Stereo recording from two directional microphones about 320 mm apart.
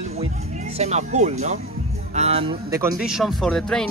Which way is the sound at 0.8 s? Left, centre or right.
Right.